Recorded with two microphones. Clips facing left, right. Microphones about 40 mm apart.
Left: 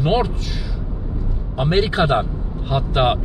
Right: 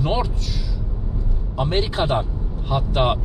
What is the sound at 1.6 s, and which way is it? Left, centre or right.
Speech, left.